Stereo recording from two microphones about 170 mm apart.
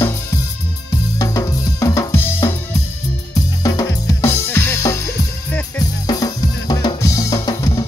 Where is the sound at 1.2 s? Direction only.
20° left (ahead or behind).